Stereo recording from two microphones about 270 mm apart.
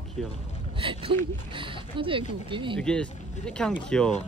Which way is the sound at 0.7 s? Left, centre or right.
Centre.